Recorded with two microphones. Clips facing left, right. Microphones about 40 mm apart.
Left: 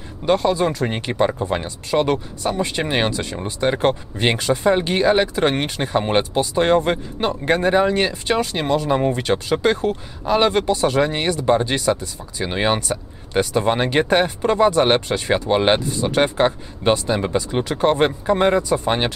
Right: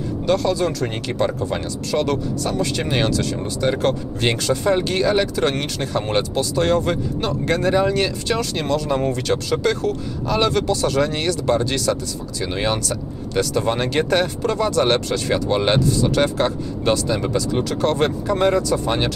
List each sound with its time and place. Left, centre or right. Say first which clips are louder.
0.3 s speech: left 2 dB; left